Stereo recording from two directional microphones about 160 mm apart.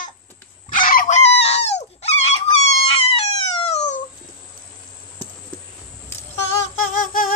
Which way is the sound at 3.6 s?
40° left (ahead or behind).